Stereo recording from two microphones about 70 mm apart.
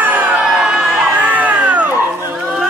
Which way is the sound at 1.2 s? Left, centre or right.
Right.